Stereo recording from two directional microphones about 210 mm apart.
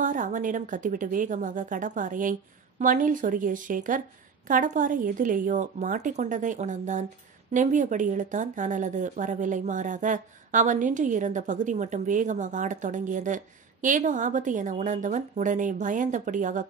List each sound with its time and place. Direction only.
0.0 s speech: 40° right (ahead or behind)